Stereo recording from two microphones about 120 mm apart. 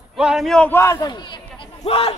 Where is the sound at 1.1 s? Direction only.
40° left (ahead or behind).